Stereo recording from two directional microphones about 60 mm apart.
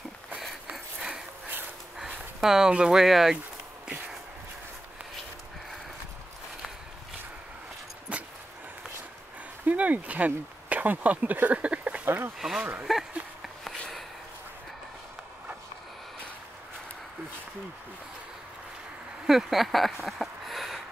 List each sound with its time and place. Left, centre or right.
0.7 s a sound: right
2.4 s speech: centre
9.7 s speech: right
12.4 s speech: centre
19.2 s speech: centre